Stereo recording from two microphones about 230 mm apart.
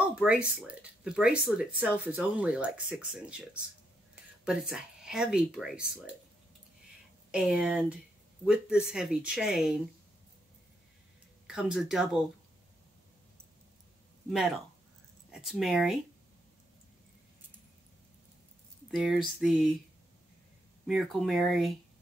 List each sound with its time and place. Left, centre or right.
0.0 s speech: centre
7.2 s speech: centre
11.4 s speech: centre
14.3 s speech: centre
18.9 s speech: centre
20.8 s speech: centre